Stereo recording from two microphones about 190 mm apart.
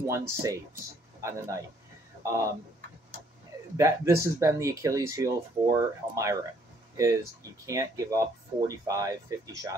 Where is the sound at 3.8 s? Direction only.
15° right (ahead or behind).